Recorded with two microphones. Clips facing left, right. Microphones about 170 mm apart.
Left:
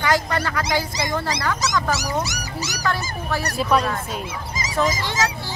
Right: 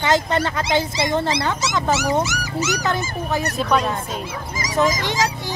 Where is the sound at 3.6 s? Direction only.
5° left (ahead or behind).